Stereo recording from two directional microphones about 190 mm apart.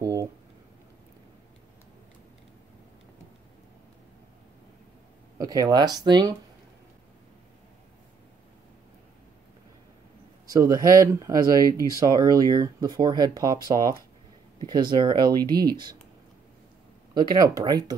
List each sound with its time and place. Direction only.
0.0 s speech: 15° right (ahead or behind)
5.4 s speech: 20° right (ahead or behind)
10.4 s speech: 20° right (ahead or behind)
17.1 s speech: 20° right (ahead or behind)